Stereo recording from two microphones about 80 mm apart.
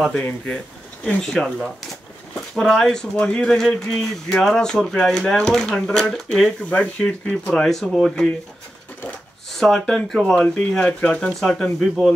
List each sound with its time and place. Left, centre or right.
0.1 s speech: centre
1.0 s speech: centre
9.6 s speech: centre